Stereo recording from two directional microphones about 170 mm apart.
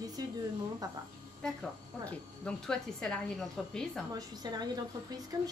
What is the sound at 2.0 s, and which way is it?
Speech, 5° left (ahead or behind).